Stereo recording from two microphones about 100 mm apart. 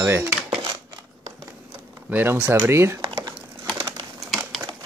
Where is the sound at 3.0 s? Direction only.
60° right (ahead or behind).